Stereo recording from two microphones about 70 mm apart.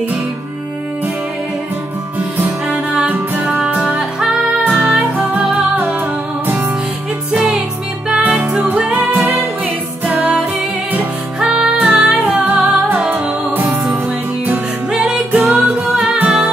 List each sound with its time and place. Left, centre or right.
2.9 s music: centre
7.3 s music: centre
11.3 s music: centre
12.3 s music: right
14.9 s music: centre
16.2 s music: right